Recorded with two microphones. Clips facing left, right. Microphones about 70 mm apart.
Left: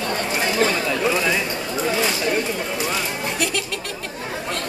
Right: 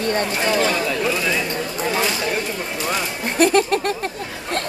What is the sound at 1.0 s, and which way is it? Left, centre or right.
Speech, centre.